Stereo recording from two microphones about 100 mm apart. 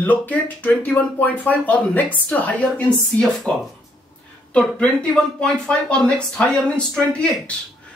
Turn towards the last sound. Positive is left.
turn(degrees=10)  # may be behind; listen again after turning